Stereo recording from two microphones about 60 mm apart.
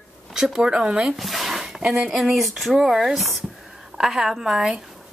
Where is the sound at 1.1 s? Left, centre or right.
Centre.